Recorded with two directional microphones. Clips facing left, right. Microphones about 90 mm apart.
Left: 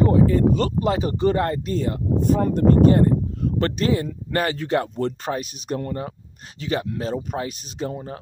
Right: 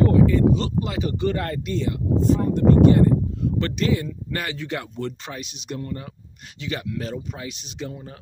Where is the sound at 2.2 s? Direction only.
55° left (ahead or behind).